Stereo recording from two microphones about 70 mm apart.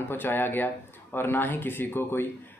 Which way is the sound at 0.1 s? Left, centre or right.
Left.